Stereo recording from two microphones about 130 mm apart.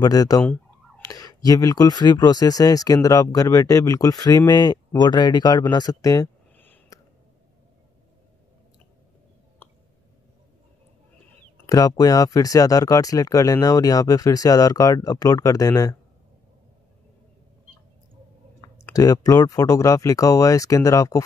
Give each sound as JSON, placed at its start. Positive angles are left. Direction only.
{"t": 0.0, "sound": "speech", "side_deg": 30}
{"t": 0.4, "sound": "fowl", "side_deg": 10}
{"t": 1.0, "sound": "speech", "side_deg": 30}
{"t": 6.5, "sound": "a sound", "side_deg": 15}
{"t": 11.6, "sound": "a sound", "side_deg": 25}
{"t": 11.9, "sound": "speech", "side_deg": 30}
{"t": 18.9, "sound": "speech", "side_deg": 25}